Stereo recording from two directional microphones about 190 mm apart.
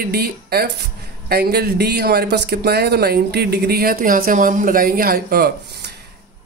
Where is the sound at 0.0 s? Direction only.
55° right (ahead or behind).